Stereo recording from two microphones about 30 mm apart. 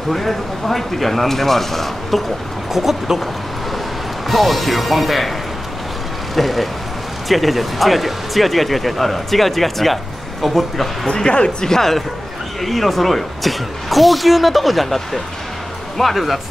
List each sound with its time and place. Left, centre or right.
0.1 s speech: centre
2.7 s speech: centre
4.3 s speech: centre
6.3 s speech: centre
11.2 s speech: left
11.6 s speech: centre
16.0 s speech: centre